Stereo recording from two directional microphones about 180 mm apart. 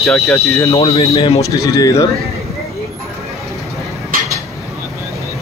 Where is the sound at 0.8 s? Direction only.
35° left (ahead or behind).